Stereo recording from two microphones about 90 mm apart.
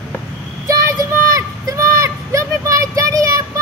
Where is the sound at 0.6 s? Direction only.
40° right (ahead or behind).